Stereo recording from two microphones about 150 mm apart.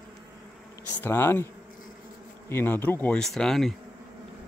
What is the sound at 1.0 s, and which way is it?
Speech, 15° left (ahead or behind).